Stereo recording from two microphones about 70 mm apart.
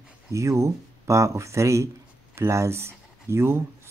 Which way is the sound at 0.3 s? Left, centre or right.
Right.